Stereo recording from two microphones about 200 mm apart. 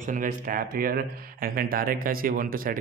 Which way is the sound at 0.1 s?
40° right (ahead or behind).